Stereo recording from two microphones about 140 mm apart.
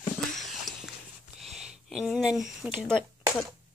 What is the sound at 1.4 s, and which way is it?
Speech, centre (ahead or behind).